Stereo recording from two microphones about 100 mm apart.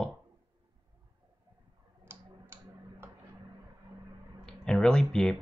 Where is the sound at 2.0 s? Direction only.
25° right (ahead or behind).